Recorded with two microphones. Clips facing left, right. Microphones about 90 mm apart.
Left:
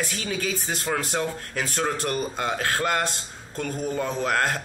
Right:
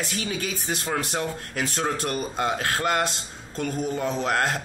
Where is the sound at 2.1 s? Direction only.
25° right (ahead or behind).